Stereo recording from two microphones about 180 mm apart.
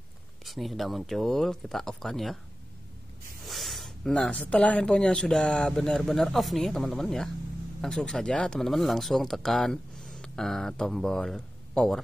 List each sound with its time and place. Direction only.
0.5 s speech: centre (ahead or behind)
3.4 s speech: centre (ahead or behind)